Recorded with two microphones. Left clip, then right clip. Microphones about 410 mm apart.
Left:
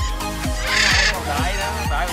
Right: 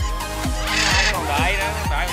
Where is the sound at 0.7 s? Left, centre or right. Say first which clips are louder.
Left 2 dB; centre.